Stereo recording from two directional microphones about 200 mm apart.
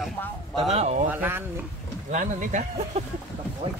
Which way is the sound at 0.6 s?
35° right (ahead or behind).